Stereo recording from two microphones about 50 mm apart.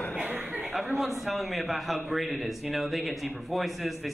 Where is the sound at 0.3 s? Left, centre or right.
Right.